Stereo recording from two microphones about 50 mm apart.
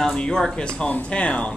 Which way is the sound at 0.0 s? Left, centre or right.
Centre.